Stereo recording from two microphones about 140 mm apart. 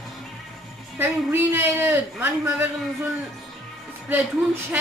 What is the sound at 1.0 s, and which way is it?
A man's voice, 15° right (ahead or behind).